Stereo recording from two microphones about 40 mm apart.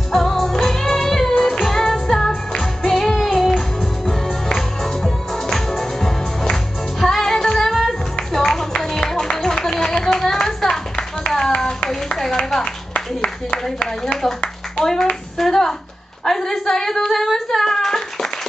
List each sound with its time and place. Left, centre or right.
0.1 s music: centre
1.3 s music: left
1.6 s music: centre
11.9 s clapping: centre
12.9 s a sound: left
14.8 s hands: centre
16.3 s a sound: centre
16.6 s singing: centre